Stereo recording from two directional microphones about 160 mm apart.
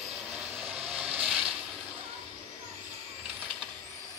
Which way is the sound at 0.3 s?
5° right (ahead or behind).